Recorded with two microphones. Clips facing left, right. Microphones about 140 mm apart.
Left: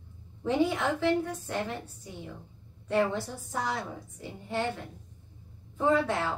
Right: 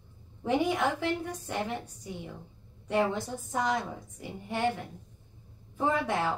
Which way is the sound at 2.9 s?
15° right (ahead or behind).